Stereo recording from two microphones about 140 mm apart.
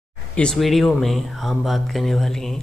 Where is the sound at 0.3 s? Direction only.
5° left (ahead or behind).